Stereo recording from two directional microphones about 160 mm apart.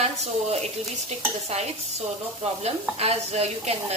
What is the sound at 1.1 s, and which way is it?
Speech, 40° right (ahead or behind).